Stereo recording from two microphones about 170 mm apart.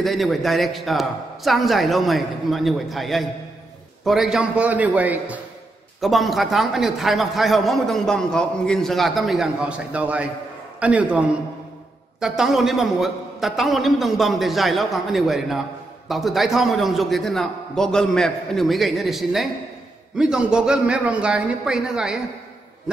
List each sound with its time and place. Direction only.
0.0 s a man's voice: centre (ahead or behind)